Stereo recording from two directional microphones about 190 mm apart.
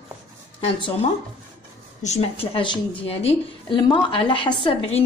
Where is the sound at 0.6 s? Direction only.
25° left (ahead or behind).